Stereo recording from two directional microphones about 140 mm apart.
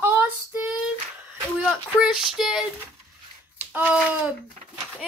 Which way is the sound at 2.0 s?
Centre (ahead or behind).